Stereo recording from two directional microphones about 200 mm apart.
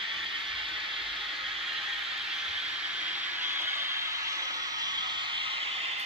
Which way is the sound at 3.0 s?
10° right (ahead or behind).